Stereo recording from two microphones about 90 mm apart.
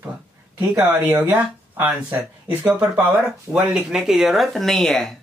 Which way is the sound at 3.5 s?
10° right (ahead or behind).